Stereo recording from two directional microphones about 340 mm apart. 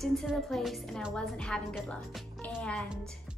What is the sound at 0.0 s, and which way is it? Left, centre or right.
A woman's voice, centre.